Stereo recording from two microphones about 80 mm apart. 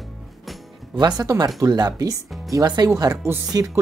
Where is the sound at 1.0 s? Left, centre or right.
Right.